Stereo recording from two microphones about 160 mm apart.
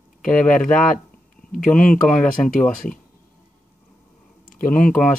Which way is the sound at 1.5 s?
60° left (ahead or behind).